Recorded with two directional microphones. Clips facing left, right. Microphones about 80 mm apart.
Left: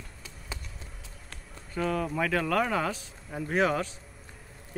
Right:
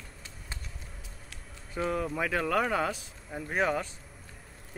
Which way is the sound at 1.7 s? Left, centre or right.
Centre.